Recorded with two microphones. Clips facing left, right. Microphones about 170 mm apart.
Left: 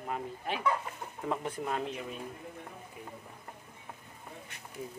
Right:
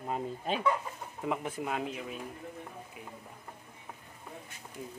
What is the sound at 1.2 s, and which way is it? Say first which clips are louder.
Speech: right 1 dB; 5° right (ahead or behind).